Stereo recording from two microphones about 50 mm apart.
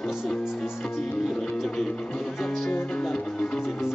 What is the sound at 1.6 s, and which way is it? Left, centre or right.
Music, centre.